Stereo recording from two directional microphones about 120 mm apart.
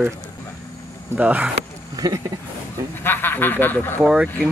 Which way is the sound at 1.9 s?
30° right (ahead or behind).